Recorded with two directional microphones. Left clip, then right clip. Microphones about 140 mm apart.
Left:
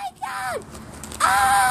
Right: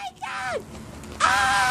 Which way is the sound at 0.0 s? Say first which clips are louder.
Left 2 dB; 20° left (ahead or behind).